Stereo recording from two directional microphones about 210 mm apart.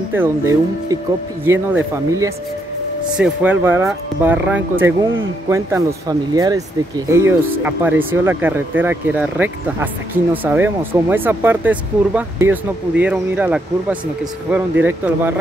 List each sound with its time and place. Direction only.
0.1 s speech: 10° right (ahead or behind)